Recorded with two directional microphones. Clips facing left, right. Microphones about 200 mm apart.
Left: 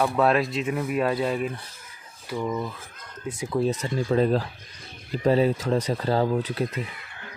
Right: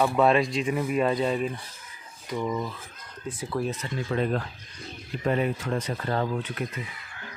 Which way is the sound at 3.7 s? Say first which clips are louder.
Left 6 dB; 40° left (ahead or behind).